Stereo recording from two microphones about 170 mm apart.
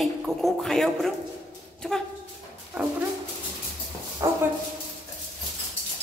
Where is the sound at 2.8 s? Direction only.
5° right (ahead or behind).